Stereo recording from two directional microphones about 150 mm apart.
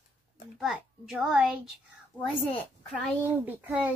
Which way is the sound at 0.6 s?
Centre (ahead or behind).